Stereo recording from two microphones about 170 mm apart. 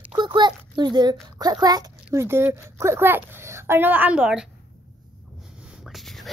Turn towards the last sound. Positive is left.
turn(degrees=0)  # may be behind; listen again after turning